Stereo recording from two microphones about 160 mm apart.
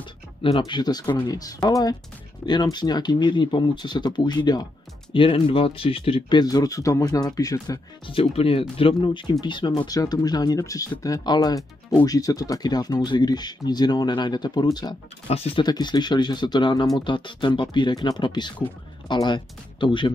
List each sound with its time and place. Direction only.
0.0 s speech: 30° left (ahead or behind)
8.1 s speech: 35° left (ahead or behind)
15.2 s speech: 40° left (ahead or behind)